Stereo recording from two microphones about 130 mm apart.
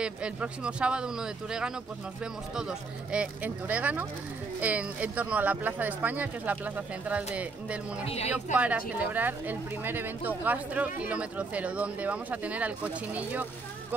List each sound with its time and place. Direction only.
0.0 s speech: 10° right (ahead or behind)
8.0 s speech: 50° left (ahead or behind)
8.5 s speech: 10° right (ahead or behind)